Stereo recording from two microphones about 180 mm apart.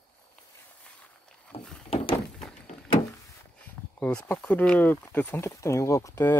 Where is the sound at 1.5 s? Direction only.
35° left (ahead or behind).